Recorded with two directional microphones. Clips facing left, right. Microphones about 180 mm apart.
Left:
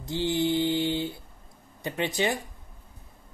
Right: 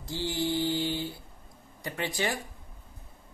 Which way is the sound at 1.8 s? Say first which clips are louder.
Left 4 dB; 20° left (ahead or behind).